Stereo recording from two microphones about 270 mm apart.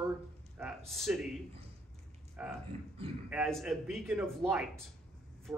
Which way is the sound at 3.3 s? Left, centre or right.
Centre.